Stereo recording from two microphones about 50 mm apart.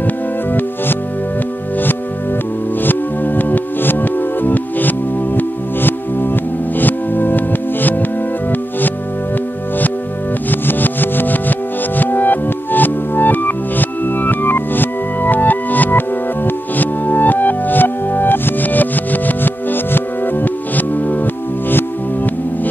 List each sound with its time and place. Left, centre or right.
0.0 s music: left
2.8 s music: left
10.5 s music: left